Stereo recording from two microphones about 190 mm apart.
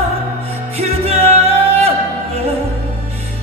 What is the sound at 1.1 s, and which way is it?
Music, 30° right (ahead or behind).